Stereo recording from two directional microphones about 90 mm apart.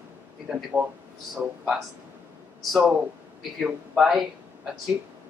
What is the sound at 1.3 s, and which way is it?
Speech, 5° right (ahead or behind).